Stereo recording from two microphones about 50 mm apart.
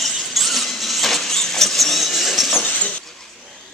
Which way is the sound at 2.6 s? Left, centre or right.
Left.